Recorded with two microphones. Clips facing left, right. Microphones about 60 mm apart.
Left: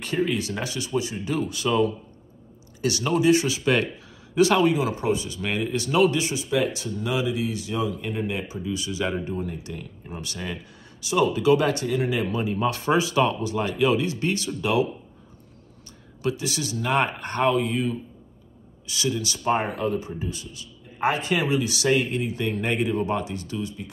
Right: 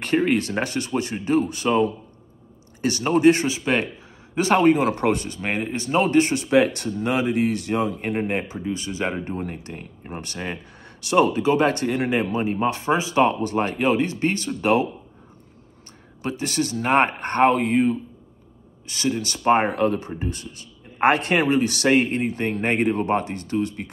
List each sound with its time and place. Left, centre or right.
0.0 s speech: right
1.3 s speech: right
3.4 s speech: right
4.4 s speech: right
4.9 s speech: right
5.4 s speech: right
11.4 s speech: right
14.6 s speech: right
16.2 s speech: right